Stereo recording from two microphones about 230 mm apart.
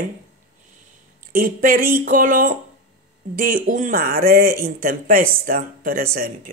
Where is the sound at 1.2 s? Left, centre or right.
Right.